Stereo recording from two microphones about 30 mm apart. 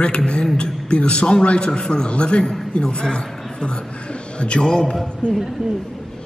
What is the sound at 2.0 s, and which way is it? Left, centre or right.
A man's voice, left.